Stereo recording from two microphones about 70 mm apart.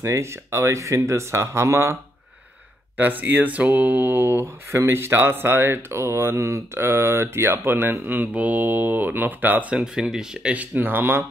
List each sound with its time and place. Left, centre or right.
0.0 s speech: right
3.0 s speech: right
9.9 s speech: centre; by 11.2 s right